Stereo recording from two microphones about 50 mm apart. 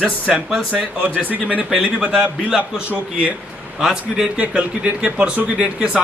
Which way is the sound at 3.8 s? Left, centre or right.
Centre.